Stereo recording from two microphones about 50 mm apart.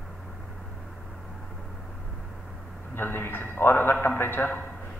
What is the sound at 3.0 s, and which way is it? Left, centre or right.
A man's voice, left.